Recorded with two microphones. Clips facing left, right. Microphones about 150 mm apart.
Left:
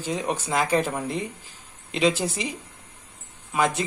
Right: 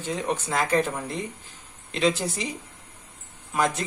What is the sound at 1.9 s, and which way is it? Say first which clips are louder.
Speech: left 1 dB; 25° left (ahead or behind).